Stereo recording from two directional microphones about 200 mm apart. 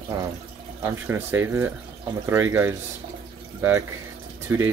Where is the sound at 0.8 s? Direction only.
10° right (ahead or behind).